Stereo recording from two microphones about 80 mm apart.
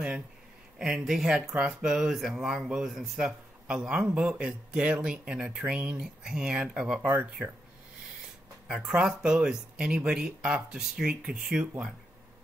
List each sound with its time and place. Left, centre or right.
0.7 s speech: centre
8.6 s speech: centre